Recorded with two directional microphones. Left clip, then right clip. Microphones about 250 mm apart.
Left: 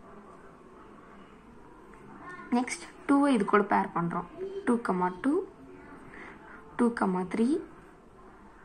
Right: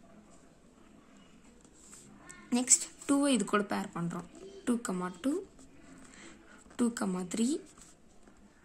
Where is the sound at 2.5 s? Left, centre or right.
Right.